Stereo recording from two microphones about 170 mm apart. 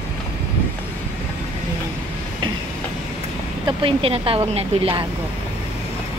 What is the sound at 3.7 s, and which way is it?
Speech, 30° right (ahead or behind).